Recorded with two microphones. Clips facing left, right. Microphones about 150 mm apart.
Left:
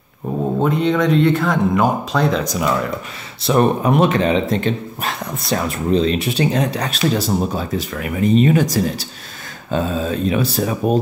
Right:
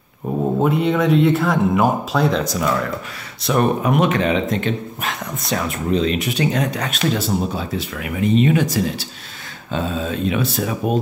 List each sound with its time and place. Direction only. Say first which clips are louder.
0.6 s speech: left 1 dB; 5° right (ahead or behind)
2.4 s speech: left 1 dB; 15° left (ahead or behind)
3.4 s speech: left 2 dB; 30° left (ahead or behind)